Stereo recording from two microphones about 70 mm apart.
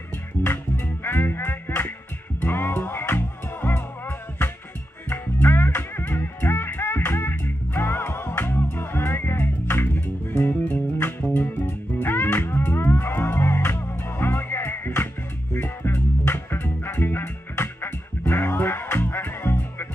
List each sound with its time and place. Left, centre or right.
0.4 s music: left